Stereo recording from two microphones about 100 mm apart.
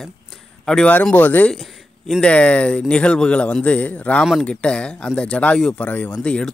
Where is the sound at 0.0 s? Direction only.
5° left (ahead or behind).